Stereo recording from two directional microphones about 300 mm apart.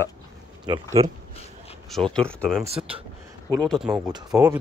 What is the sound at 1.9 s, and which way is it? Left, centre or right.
Speech, centre.